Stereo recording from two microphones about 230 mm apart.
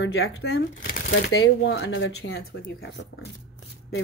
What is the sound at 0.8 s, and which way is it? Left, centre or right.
Speech, left.